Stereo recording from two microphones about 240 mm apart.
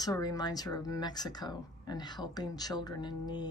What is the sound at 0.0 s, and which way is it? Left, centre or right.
Speech, centre.